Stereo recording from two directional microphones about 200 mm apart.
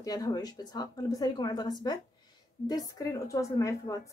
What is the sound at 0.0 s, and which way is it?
A woman's voice, 20° left (ahead or behind).